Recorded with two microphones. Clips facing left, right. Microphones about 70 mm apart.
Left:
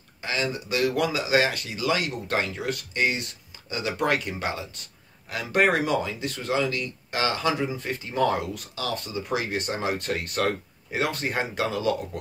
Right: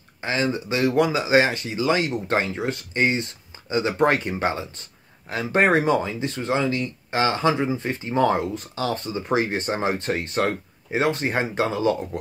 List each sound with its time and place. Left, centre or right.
0.2 s speech: right